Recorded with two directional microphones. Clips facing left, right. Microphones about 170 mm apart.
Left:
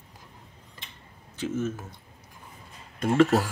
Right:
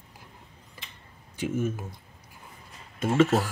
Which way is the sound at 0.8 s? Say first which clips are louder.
Right 1 dB; 10° right (ahead or behind).